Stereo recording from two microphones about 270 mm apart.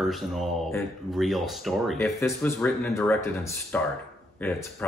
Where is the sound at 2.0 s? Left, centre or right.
Centre.